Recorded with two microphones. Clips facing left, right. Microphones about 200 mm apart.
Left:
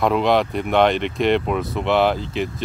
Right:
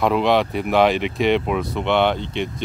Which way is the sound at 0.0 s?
Centre (ahead or behind).